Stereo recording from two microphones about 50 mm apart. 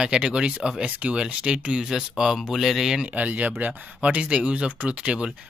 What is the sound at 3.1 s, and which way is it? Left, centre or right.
Speech, right.